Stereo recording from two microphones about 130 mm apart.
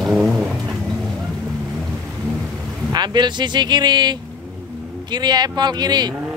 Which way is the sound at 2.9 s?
35° right (ahead or behind).